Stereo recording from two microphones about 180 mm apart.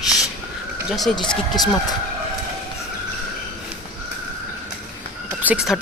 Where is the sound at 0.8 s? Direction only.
Centre (ahead or behind).